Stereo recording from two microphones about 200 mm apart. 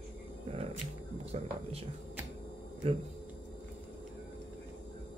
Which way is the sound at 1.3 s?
30° right (ahead or behind).